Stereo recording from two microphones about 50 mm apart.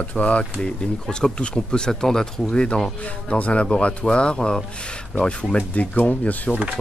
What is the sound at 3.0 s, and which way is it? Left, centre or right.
Speech, left.